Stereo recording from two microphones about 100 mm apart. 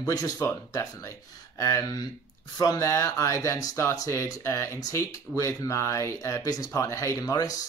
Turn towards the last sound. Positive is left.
turn(degrees=40)  # may be behind; listen again after turning